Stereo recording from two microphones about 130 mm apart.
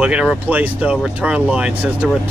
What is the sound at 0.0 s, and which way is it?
Speech, 5° right (ahead or behind).